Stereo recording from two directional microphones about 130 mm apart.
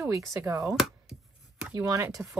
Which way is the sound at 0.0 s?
25° right (ahead or behind).